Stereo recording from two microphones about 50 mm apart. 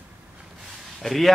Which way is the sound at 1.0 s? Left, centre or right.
Centre.